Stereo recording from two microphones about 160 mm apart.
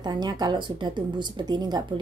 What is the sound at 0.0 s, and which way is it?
A woman's voice, 25° right (ahead or behind).